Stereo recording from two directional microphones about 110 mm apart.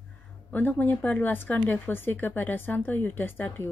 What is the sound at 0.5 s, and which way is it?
A woman's voice, 15° left (ahead or behind).